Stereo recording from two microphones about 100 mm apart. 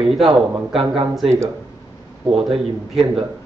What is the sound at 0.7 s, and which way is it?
Speech, 60° right (ahead or behind).